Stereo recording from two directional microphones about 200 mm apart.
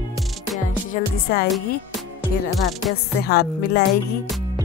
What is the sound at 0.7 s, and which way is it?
Music, 40° left (ahead or behind).